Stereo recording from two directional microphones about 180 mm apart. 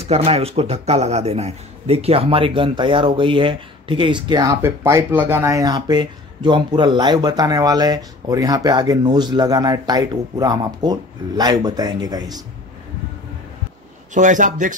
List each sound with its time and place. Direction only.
0.0 s speech: 35° right (ahead or behind)
14.1 s speech: 45° right (ahead or behind)